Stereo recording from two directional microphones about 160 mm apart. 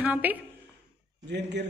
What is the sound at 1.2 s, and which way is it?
Speech, 90° right.